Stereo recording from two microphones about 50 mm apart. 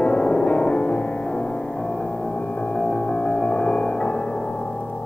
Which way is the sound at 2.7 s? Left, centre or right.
Left.